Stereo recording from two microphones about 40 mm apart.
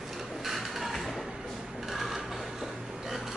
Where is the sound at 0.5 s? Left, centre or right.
Centre.